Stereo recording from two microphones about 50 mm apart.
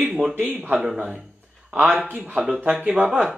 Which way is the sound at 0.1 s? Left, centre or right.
Centre.